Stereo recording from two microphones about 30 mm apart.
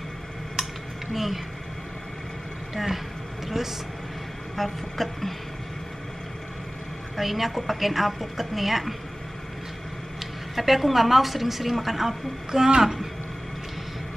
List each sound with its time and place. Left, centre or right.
1.1 s speech: centre
2.7 s speech: centre
4.6 s a woman's voice: centre
7.2 s a woman's voice: centre
10.5 s a woman's voice: centre
12.4 s speech: right